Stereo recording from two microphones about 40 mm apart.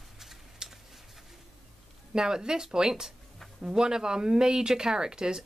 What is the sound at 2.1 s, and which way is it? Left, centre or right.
Speech, centre.